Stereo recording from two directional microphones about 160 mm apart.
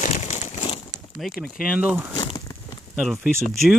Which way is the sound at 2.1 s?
25° left (ahead or behind).